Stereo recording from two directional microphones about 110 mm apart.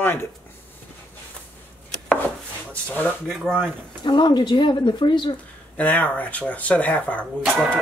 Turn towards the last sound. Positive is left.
turn(degrees=0)  # may be behind; listen again after turning